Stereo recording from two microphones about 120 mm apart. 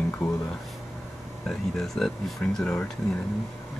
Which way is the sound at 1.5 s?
5° left (ahead or behind).